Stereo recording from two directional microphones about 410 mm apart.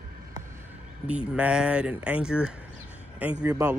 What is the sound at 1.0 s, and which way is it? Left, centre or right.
Speech, centre.